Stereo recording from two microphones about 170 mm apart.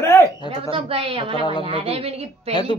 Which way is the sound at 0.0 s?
15° left (ahead or behind).